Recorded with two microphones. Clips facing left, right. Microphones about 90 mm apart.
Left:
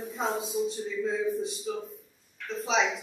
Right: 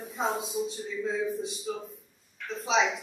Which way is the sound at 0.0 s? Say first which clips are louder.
Even; centre (ahead or behind).